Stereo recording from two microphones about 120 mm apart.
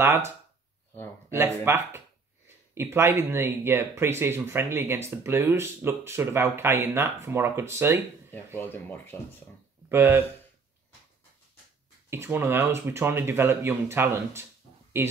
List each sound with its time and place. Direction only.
0.0 s speech: 20° right (ahead or behind)
1.3 s speech: 25° right (ahead or behind)
8.5 s speech: 15° left (ahead or behind)
9.8 s speech: 20° right (ahead or behind)
12.1 s speech: 20° right (ahead or behind)